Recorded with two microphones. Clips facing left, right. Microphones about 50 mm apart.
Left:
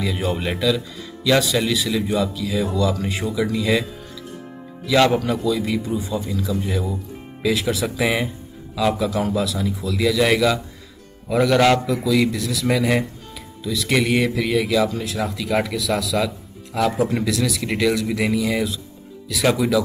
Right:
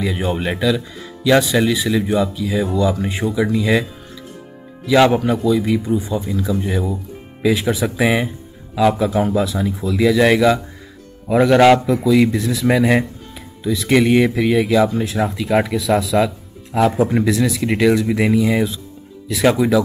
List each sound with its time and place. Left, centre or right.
0.0 s speech: right
4.8 s speech: centre
8.0 s speech: centre
8.9 s speech: right